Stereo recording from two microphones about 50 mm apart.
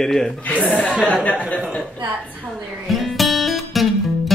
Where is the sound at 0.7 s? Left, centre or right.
Left.